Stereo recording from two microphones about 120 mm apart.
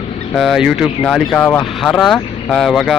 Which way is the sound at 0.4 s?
Centre (ahead or behind).